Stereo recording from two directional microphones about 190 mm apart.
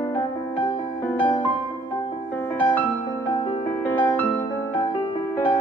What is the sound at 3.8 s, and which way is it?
Music, 10° left (ahead or behind).